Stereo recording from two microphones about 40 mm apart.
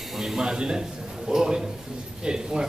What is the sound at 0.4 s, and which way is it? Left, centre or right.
A man's voice, centre.